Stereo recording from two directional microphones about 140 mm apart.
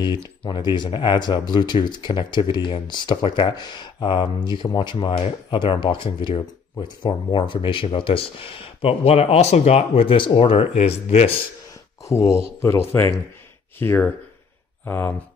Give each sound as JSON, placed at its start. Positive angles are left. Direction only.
{"t": 0.5, "sound": "speech", "side_deg": 30}
{"t": 10.8, "sound": "speech", "side_deg": 50}
{"t": 12.0, "sound": "speech", "side_deg": 20}